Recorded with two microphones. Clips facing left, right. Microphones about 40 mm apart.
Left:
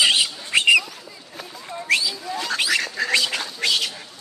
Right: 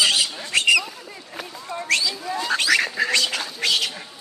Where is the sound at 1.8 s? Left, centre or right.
Centre.